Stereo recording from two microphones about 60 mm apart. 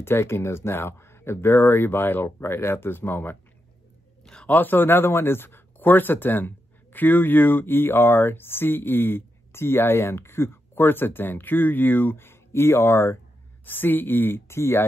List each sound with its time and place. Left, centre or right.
0.0 s speech: left
4.2 s a sound: centre
4.5 s speech: left
13.7 s speech: left